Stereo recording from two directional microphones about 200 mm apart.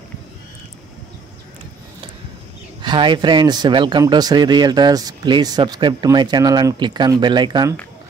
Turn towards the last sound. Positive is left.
turn(degrees=-20)  # may be behind; listen again after turning